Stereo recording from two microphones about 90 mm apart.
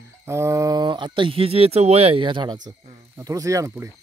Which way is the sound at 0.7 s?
55° right (ahead or behind).